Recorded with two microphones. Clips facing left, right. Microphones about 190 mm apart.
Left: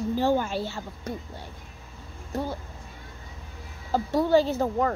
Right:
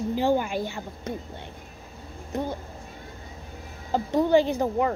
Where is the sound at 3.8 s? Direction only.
20° right (ahead or behind).